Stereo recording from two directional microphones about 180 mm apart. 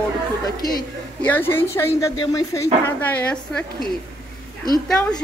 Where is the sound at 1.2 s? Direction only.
10° left (ahead or behind).